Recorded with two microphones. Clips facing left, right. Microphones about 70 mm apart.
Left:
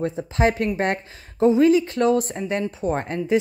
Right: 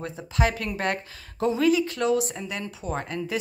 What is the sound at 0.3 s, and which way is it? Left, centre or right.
Speech, left.